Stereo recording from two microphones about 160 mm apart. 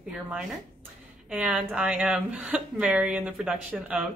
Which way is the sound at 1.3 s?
10° right (ahead or behind).